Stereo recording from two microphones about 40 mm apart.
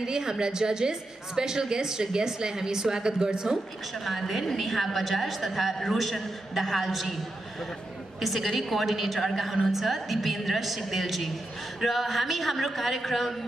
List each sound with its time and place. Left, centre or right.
0.0 s a woman's voice: centre
4.0 s a woman's voice: centre
8.2 s a woman's voice: centre